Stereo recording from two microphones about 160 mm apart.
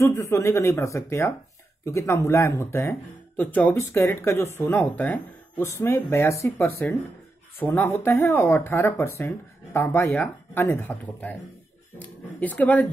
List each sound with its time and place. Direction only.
0.0 s speech: 15° left (ahead or behind)